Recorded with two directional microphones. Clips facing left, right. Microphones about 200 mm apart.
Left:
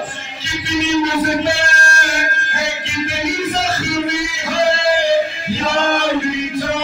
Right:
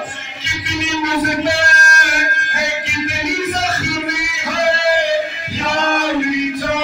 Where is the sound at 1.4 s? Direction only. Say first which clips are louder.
Right 1 dB; 30° left (ahead or behind).